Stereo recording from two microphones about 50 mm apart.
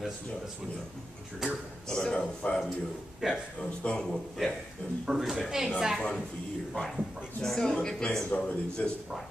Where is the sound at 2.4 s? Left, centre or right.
Left.